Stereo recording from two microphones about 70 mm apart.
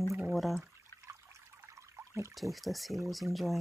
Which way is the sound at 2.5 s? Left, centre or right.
Centre.